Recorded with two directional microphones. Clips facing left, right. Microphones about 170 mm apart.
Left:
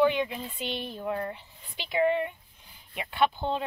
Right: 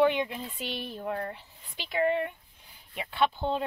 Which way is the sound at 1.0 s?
15° left (ahead or behind).